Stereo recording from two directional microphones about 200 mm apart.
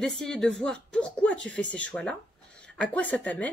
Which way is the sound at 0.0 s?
Centre (ahead or behind).